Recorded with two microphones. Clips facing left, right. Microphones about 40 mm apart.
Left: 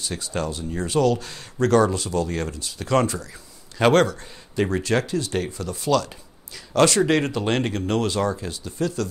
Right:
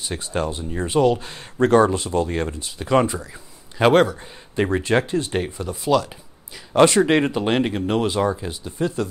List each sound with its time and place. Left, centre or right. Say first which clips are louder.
0.0 s speech: right 2 dB; right